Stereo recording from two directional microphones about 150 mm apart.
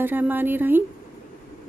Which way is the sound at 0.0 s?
15° right (ahead or behind).